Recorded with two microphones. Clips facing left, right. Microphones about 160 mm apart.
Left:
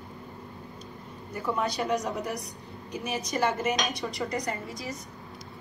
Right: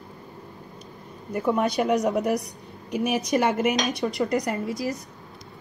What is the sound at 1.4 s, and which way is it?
A woman's voice, 65° right (ahead or behind).